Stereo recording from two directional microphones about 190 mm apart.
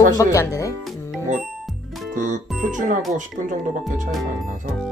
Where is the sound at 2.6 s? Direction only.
45° right (ahead or behind).